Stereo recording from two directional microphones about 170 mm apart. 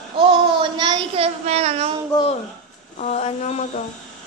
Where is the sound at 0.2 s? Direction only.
30° right (ahead or behind).